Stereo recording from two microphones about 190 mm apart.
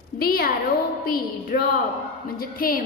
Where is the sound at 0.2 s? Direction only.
50° left (ahead or behind).